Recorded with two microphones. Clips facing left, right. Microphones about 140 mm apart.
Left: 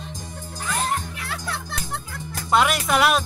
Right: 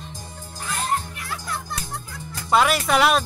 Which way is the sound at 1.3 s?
75° left (ahead or behind).